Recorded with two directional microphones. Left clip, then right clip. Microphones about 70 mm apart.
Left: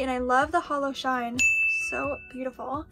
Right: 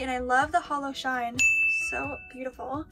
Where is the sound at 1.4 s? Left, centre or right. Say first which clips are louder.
Even; centre.